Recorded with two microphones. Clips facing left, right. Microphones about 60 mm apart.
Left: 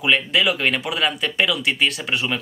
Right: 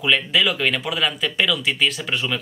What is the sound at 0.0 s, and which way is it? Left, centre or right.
Speech, centre.